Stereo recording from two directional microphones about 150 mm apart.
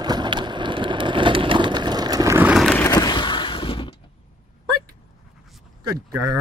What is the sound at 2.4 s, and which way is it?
Vehicle, 10° right (ahead or behind).